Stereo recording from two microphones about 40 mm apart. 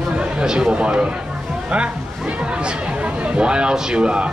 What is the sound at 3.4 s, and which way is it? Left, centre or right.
Speech, right.